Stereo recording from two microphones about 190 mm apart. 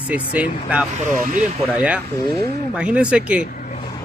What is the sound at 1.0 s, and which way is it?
Speech, 45° right (ahead or behind).